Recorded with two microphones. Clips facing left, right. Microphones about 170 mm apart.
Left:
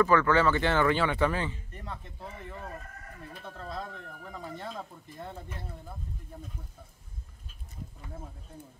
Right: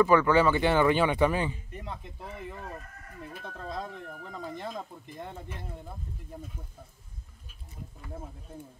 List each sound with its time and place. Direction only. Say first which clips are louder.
0.0 s speech: right 2 dB; 15° right (ahead or behind)
3.5 s speech: right 2 dB; 15° right (ahead or behind)